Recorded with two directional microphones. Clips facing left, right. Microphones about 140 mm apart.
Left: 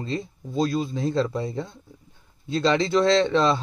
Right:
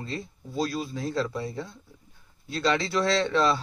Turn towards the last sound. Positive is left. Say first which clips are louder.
# left 4 dB
turn(degrees=20)  # may be behind; listen again after turning